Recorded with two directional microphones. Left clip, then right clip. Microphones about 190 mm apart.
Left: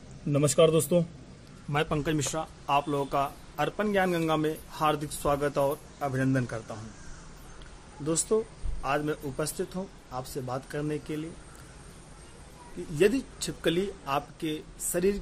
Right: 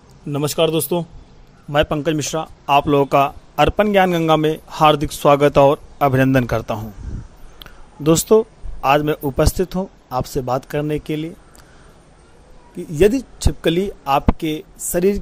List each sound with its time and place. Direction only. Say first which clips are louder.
0.3 s a man's voice: right 5 dB; 25° right (ahead or behind); by 6.8 s 40° right (ahead or behind)
8.0 s speech: right 14 dB; 40° right (ahead or behind)
12.9 s speech: right 10 dB; 35° right (ahead or behind)